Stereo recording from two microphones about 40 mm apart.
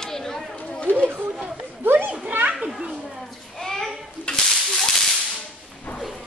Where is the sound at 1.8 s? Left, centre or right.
Right.